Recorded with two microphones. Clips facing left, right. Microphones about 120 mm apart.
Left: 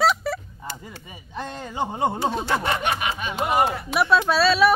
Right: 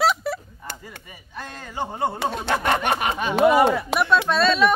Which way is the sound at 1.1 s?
20° left (ahead or behind).